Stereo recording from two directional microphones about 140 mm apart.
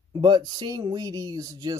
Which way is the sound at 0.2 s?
30° right (ahead or behind).